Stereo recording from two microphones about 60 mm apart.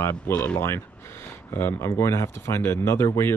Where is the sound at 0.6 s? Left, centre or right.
Left.